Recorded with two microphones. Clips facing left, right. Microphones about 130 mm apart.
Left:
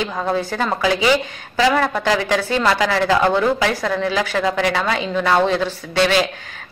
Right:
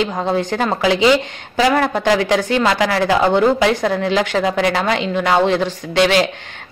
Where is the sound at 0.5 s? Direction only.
20° right (ahead or behind).